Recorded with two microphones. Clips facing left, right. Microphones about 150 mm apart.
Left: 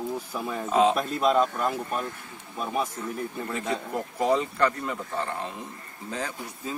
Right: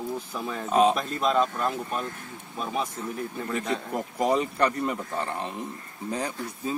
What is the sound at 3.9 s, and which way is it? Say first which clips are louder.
Speech: even; 15° right (ahead or behind).